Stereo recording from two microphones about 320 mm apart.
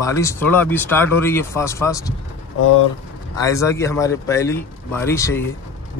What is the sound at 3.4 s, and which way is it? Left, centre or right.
Speech, centre.